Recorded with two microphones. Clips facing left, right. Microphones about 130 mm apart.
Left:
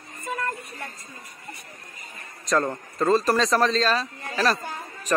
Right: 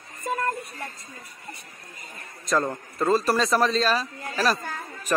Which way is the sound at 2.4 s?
5° right (ahead or behind).